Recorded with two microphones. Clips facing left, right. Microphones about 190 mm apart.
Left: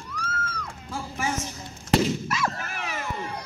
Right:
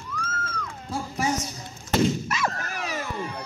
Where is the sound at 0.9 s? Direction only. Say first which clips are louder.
Right 3 dB; 40° right (ahead or behind).